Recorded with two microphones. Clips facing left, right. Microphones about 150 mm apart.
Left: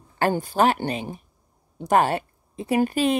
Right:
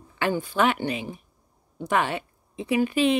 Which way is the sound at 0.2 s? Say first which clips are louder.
Left 3 dB; 40° left (ahead or behind).